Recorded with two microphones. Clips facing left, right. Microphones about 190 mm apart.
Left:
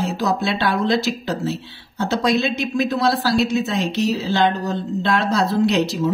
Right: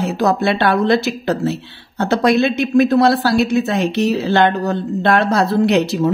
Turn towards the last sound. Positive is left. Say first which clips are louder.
# right 3 dB
turn(degrees=-60)  # may be behind; listen again after turning